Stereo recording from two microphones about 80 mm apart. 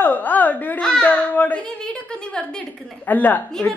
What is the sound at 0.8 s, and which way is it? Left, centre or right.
Speech, centre.